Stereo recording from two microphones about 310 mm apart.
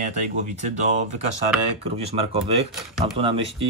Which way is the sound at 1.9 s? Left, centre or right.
Centre.